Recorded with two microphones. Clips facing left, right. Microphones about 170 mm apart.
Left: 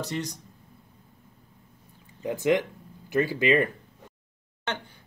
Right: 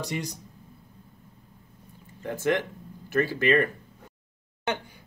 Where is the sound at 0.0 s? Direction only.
10° right (ahead or behind).